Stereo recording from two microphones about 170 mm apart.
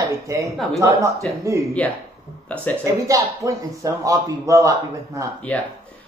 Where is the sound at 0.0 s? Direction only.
20° right (ahead or behind).